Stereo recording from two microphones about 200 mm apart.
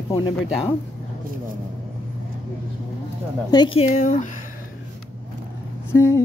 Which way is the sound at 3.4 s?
25° left (ahead or behind).